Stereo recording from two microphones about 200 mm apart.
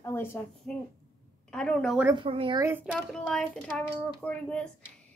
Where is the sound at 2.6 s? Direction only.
10° right (ahead or behind).